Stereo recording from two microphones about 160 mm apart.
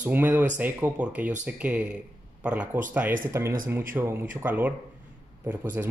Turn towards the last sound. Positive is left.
turn(degrees=-10)  # may be behind; listen again after turning